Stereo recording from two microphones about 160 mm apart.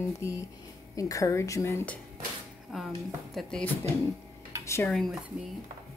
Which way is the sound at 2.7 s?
Centre (ahead or behind).